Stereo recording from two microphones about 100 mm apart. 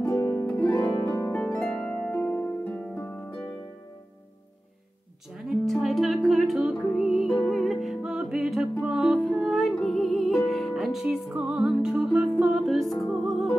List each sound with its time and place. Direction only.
0.1 s harp: 20° left (ahead or behind)
1.5 s harp: 10° left (ahead or behind)
2.2 s harp: 25° left (ahead or behind)
5.5 s music: centre (ahead or behind)